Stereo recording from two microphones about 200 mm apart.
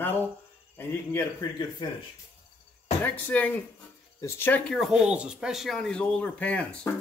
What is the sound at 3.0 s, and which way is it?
A man's voice, 10° left (ahead or behind).